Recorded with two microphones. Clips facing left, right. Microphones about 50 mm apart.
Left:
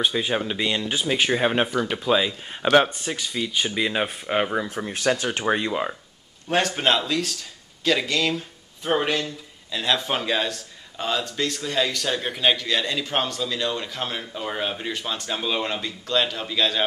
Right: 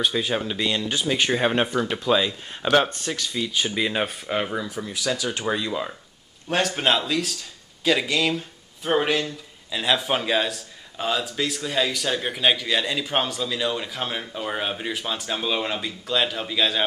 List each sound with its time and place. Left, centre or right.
0.0 s speech: centre
4.3 s speech: left
4.6 s speech: left
5.7 s speech: left
6.5 s speech: centre